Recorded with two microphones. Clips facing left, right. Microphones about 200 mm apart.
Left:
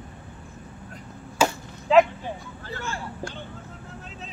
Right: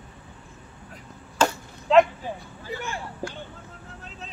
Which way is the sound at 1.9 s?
5° left (ahead or behind).